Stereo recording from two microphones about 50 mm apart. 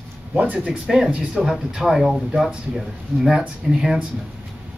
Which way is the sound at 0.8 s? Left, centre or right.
Centre.